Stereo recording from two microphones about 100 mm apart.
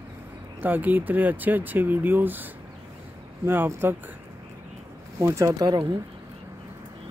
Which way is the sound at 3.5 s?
20° right (ahead or behind).